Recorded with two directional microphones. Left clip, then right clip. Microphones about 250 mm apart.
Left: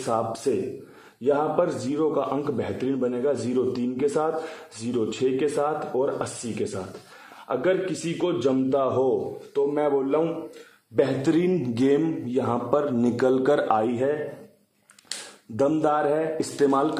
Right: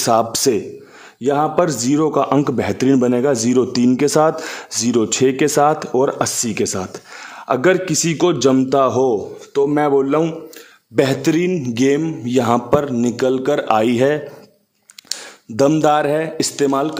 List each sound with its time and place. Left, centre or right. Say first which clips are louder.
0.0 s a man's voice: right 10 dB; right
11.2 s a man's voice: right 5 dB; right
12.3 s speech: right 13 dB; right
12.9 s a man's voice: right 5 dB; right
13.7 s speech: right 9 dB; right
15.5 s a man's voice: right 8 dB; right